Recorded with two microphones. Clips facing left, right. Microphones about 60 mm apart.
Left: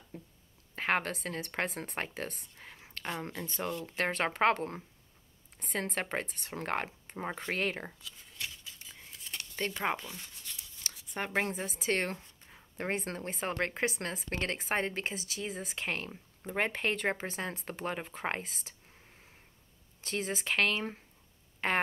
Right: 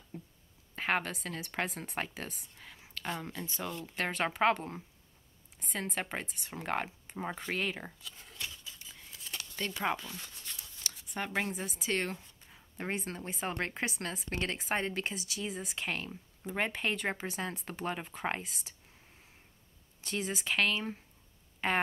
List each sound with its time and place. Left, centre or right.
0.7 s speech: left
2.6 s whispering: left
3.4 s speech: left
9.6 s speech: left
11.1 s speech: left
20.0 s speech: left
21.5 s a sound: left